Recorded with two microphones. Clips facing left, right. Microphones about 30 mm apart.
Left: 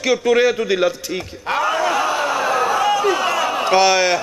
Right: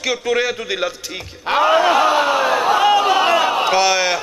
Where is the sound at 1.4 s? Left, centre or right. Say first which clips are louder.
Right 5 dB; right.